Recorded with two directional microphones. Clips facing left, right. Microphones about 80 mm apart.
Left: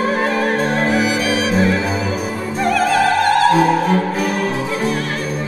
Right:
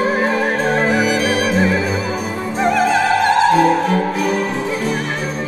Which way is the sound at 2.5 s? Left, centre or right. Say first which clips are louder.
Even; centre.